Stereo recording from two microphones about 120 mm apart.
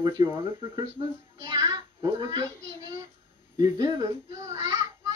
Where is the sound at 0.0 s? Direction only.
35° right (ahead or behind).